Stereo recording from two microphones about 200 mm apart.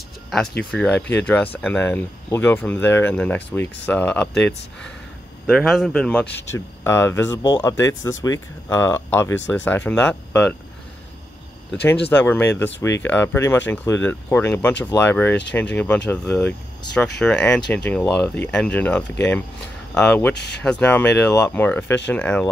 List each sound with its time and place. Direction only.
0.3 s speech: 5° left (ahead or behind)
12.1 s speech: 10° left (ahead or behind)
20.3 s speech: 55° left (ahead or behind)
20.6 s speech: 5° left (ahead or behind)